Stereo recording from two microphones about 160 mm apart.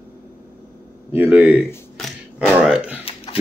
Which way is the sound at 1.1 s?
10° right (ahead or behind).